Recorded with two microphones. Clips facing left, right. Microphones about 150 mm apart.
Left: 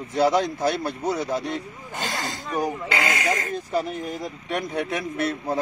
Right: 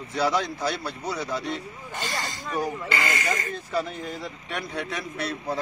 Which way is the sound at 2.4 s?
15° left (ahead or behind).